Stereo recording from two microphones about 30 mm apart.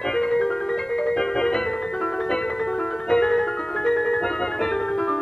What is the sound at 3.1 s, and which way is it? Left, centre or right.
Music, left.